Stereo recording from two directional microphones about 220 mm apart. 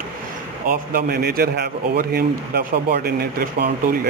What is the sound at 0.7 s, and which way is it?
A man's voice, 40° right (ahead or behind).